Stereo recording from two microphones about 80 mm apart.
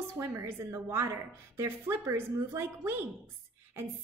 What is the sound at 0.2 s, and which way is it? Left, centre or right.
A woman's voice, right.